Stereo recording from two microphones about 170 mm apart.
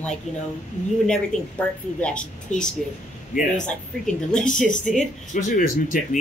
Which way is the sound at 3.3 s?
5° left (ahead or behind).